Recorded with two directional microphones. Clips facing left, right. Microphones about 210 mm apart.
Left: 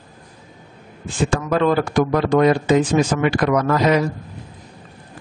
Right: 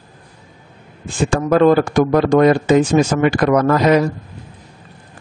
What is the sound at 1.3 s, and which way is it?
Speech, 45° right (ahead or behind).